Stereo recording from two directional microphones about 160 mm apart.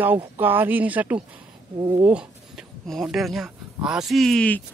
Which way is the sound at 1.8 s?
25° right (ahead or behind).